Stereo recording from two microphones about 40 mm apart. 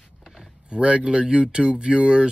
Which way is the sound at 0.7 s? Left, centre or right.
Right.